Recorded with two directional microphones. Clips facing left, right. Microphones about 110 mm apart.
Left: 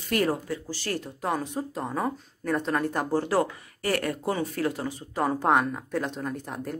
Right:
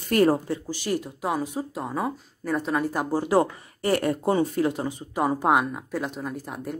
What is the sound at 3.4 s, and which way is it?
Speech, 25° right (ahead or behind).